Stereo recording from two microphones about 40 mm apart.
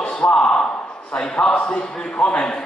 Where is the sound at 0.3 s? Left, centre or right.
Left.